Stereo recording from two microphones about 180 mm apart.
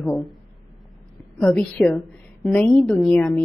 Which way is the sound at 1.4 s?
5° left (ahead or behind).